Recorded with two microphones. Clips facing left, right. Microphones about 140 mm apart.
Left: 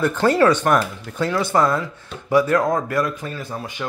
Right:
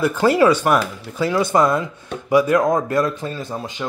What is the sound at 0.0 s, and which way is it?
Speech, 10° right (ahead or behind).